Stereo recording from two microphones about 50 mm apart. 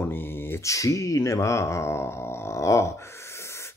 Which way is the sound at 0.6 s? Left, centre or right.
Left.